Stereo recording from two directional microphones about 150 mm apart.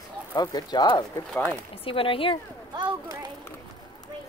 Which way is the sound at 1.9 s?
35° left (ahead or behind).